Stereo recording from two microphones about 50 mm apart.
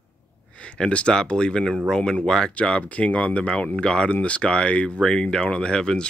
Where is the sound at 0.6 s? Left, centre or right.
Left.